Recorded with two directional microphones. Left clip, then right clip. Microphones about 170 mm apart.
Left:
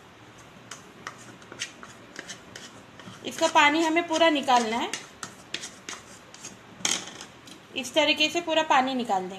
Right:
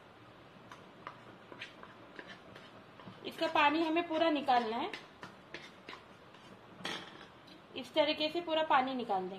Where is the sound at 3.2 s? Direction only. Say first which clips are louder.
Left 10 dB; 45° left (ahead or behind).